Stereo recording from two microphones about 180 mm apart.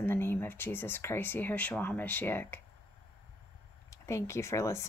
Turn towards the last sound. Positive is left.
turn(degrees=15)  # may be behind; listen again after turning